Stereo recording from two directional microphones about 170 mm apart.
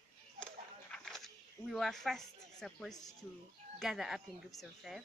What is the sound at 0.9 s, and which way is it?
Speech, centre (ahead or behind).